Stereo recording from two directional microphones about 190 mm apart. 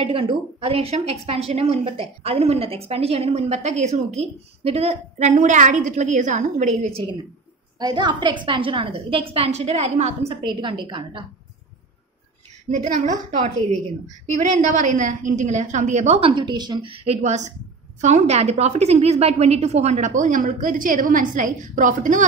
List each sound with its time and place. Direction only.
0.0 s a woman's voice: 30° right (ahead or behind)
12.6 s a woman's voice: 40° right (ahead or behind)